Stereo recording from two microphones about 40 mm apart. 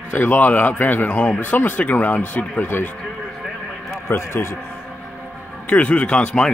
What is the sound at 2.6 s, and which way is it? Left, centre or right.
Speech, left.